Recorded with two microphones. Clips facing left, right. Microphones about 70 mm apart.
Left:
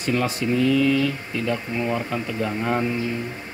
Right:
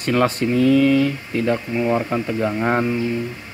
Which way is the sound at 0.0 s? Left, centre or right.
Right.